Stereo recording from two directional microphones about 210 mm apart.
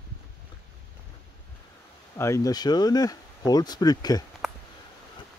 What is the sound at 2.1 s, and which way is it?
Speech, 15° left (ahead or behind).